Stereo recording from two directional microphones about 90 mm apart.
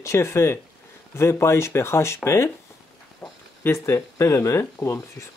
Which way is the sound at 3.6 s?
30° left (ahead or behind).